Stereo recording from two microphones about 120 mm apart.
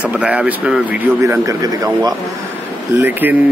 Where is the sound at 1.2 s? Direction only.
30° right (ahead or behind).